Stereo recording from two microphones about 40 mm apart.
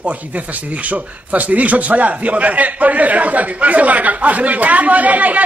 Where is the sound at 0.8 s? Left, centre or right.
Right.